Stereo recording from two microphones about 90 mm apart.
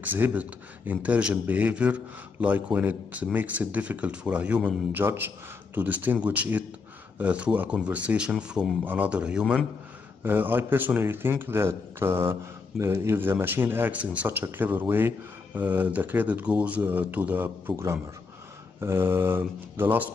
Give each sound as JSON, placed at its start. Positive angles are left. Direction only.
{"t": 0.1, "sound": "a man's voice", "side_deg": -20}
{"t": 10.2, "sound": "speech", "side_deg": -20}